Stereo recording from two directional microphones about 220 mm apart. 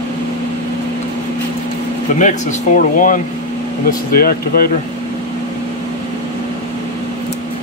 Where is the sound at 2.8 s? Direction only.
35° left (ahead or behind).